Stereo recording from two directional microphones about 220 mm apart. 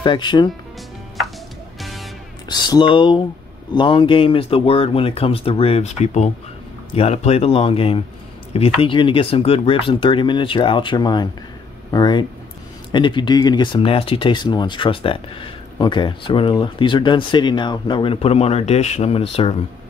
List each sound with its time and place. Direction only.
0.0 s speech: 20° left (ahead or behind)
1.8 s music: centre (ahead or behind)
2.4 s speech: 20° left (ahead or behind)